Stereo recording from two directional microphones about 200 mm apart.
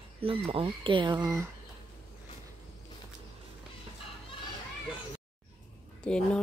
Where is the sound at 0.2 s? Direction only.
25° right (ahead or behind).